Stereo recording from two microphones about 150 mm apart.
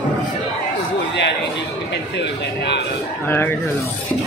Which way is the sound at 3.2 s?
15° left (ahead or behind).